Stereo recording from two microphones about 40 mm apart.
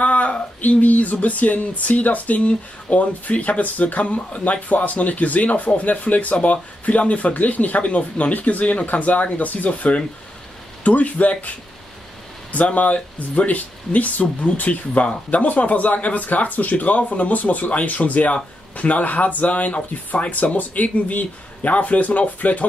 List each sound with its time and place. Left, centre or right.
0.0 s speech: left
12.5 s speech: left